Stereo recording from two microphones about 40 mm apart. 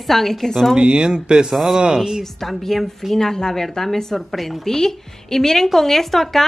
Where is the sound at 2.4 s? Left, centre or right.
Centre.